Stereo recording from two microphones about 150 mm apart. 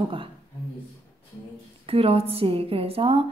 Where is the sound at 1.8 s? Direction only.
40° right (ahead or behind).